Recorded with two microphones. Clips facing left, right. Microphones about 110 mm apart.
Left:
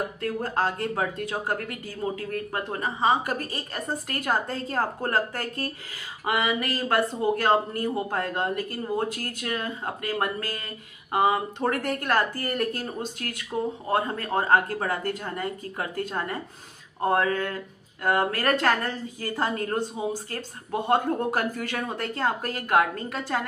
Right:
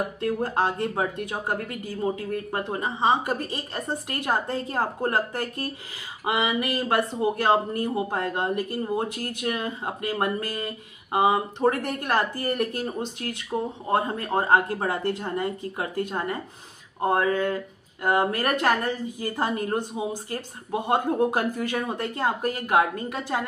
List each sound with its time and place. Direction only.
0.2 s speech: 20° right (ahead or behind)